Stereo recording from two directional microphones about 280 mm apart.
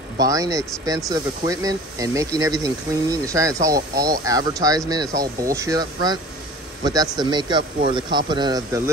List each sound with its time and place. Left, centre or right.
0.2 s speech: centre